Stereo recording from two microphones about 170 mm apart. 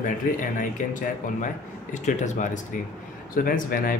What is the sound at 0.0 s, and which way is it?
Speech, 50° left (ahead or behind).